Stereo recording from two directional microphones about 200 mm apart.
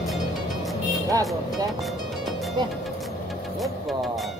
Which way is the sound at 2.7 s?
Centre (ahead or behind).